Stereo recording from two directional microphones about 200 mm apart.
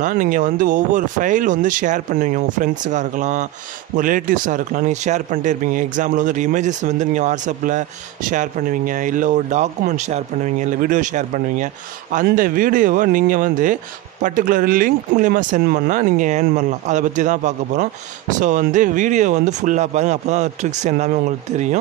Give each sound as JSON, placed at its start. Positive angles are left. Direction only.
{"t": 0.0, "sound": "a man's voice", "side_deg": -40}